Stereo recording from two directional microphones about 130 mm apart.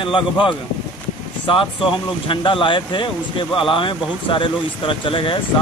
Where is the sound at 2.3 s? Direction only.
40° left (ahead or behind).